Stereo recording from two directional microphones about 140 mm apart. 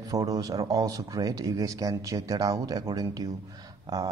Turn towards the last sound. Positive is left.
turn(degrees=-25)  # may be behind; listen again after turning